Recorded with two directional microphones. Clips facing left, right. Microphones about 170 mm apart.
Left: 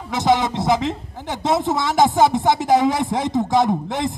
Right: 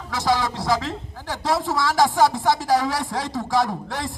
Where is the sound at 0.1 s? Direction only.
20° left (ahead or behind).